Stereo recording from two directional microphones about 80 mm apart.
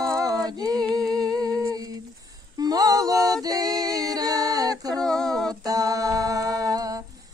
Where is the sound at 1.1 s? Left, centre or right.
Right.